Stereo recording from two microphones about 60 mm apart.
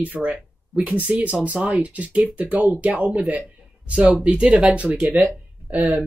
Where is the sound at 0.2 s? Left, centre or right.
Right.